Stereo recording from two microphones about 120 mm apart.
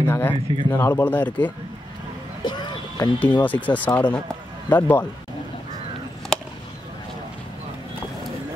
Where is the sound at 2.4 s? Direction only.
35° left (ahead or behind).